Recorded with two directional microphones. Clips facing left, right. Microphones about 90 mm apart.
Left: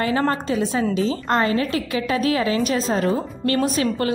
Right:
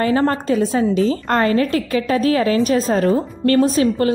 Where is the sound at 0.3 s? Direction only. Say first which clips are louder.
Right 4 dB; 40° right (ahead or behind).